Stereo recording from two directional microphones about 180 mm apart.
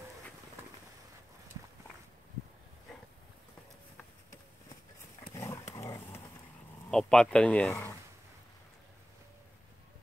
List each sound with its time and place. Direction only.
5.3 s dog: 15° left (ahead or behind)
5.8 s vehicle: 15° left (ahead or behind)
6.9 s speech: 5° left (ahead or behind)